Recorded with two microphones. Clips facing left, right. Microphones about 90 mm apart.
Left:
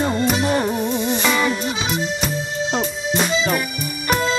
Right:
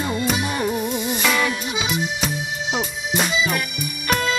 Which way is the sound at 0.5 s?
35° left (ahead or behind).